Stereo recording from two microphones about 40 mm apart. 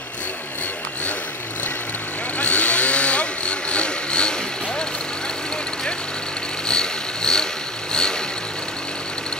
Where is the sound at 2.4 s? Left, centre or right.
Left.